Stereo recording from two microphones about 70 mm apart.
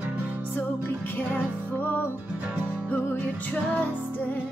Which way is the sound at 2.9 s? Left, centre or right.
Left.